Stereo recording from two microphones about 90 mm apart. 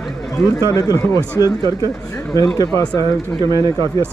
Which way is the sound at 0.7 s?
45° left (ahead or behind).